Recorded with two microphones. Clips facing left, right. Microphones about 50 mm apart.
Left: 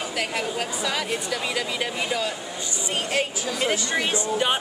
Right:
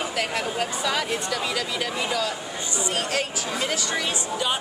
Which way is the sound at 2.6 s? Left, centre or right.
Right.